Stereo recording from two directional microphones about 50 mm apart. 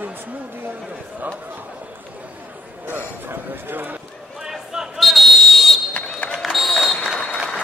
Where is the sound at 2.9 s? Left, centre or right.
Right.